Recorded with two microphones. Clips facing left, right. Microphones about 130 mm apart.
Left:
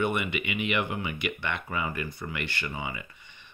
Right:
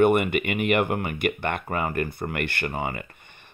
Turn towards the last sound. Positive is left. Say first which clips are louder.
# right 6 dB
turn(degrees=-50)  # may be behind; listen again after turning